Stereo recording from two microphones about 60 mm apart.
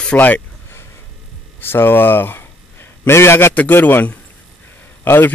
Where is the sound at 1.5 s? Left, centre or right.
Left.